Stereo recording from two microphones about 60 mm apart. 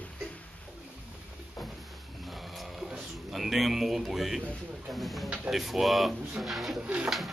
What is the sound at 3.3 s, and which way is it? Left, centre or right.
Speech, centre.